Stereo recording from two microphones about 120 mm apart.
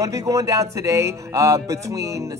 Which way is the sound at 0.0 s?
25° right (ahead or behind).